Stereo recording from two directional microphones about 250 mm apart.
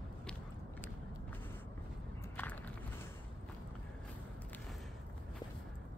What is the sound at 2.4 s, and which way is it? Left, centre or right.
Walk, centre.